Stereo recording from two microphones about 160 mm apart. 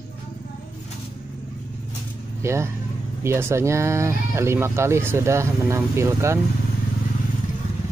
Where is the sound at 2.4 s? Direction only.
15° right (ahead or behind).